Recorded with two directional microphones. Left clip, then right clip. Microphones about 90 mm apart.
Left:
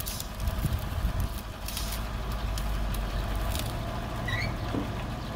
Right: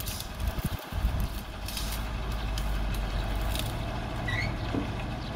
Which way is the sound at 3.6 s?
40° left (ahead or behind).